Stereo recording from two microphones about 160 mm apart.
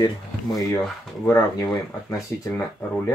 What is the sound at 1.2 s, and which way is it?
Speech, 20° left (ahead or behind).